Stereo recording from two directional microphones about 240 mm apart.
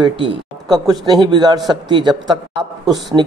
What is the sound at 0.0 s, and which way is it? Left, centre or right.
A man's voice, centre.